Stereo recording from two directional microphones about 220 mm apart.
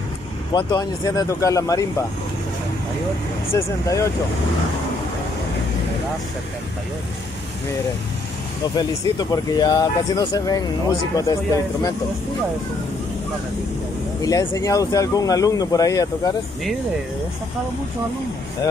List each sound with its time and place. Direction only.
0.5 s speech: 20° left (ahead or behind)
3.5 s speech: 15° left (ahead or behind)
8.7 s speech: 15° left (ahead or behind)
14.2 s speech: 15° left (ahead or behind)